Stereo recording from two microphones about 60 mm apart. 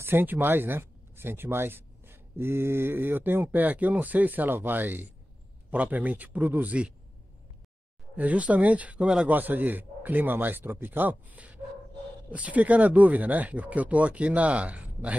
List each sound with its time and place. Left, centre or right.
0.0 s speech: right
8.2 s speech: right
9.3 s speech: right